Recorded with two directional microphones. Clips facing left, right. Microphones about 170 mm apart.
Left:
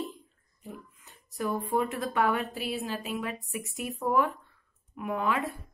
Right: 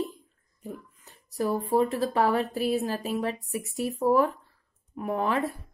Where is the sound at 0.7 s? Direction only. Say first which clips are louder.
Right 4 dB; 40° right (ahead or behind).